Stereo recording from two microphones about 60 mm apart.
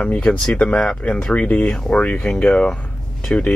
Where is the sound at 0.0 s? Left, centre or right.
Centre.